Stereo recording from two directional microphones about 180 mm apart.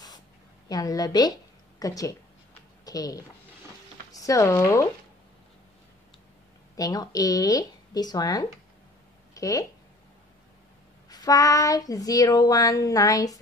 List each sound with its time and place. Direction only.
0.7 s child singing: 20° left (ahead or behind)
2.8 s a woman's voice: 20° left (ahead or behind)
6.8 s child singing: 20° left (ahead or behind)
9.3 s speech: 20° left (ahead or behind)
11.1 s child singing: 20° left (ahead or behind)